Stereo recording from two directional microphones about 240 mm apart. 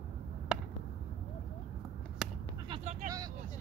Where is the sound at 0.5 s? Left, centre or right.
Centre.